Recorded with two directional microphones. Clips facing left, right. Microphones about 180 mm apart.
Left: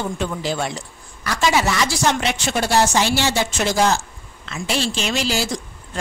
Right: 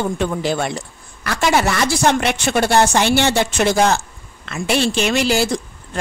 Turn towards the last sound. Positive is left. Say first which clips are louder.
# right 5 dB
turn(degrees=-60)  # may be behind; listen again after turning